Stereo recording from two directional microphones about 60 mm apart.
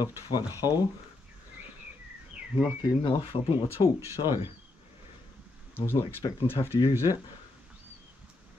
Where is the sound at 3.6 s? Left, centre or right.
Right.